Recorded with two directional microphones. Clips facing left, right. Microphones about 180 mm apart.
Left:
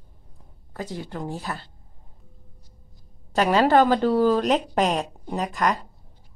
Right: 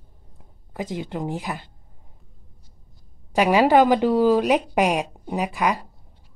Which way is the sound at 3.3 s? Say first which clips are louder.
Right 2 dB; 10° right (ahead or behind).